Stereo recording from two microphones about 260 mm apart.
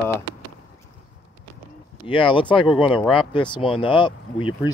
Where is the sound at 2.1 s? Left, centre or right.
Centre.